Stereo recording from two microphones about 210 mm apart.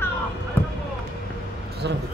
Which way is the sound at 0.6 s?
10° left (ahead or behind).